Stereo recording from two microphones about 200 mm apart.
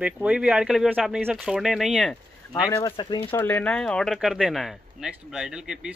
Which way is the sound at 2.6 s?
20° left (ahead or behind).